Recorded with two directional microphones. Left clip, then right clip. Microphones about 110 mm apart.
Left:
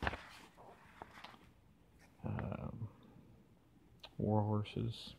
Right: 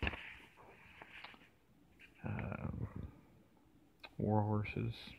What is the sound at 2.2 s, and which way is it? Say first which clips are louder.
Dog: even; 15° left (ahead or behind).